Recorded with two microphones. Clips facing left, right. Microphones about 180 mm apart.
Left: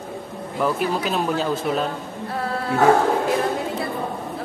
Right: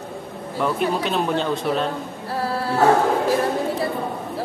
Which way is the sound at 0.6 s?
Centre (ahead or behind).